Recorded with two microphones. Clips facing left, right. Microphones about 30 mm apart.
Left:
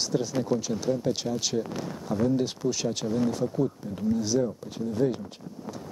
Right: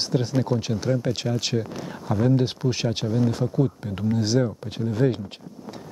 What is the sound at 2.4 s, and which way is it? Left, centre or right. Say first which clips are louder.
Speech: right 3 dB; right.